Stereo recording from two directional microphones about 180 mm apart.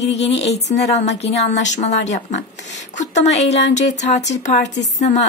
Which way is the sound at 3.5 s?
75° left (ahead or behind).